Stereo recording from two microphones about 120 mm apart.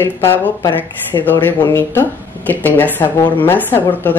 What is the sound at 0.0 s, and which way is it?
Speech, 20° left (ahead or behind).